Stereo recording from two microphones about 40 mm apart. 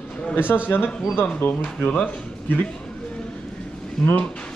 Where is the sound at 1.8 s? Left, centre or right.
Left.